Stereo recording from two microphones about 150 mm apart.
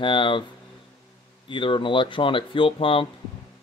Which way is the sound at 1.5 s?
35° left (ahead or behind).